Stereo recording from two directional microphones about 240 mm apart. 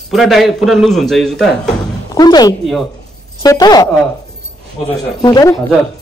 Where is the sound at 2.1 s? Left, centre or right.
Centre.